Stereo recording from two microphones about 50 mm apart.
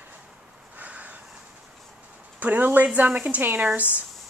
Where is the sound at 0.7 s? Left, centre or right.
Right.